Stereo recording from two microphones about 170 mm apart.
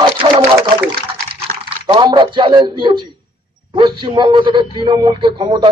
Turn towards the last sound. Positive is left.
turn(degrees=-25)  # may be behind; listen again after turning